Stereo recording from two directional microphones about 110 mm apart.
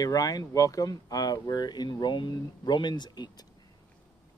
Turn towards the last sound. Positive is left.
turn(degrees=40)  # may be behind; listen again after turning